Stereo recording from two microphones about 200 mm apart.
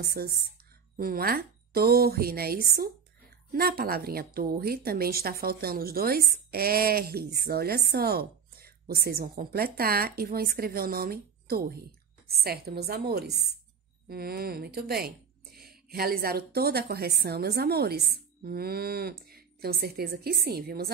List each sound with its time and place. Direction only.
0.0 s speech: 50° right (ahead or behind)